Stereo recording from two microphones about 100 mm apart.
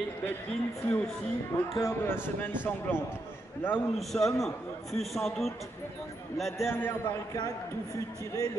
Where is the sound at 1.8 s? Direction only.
25° left (ahead or behind).